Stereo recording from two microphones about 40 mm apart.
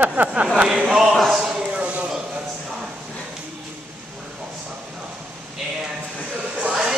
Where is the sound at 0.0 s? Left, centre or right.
Right.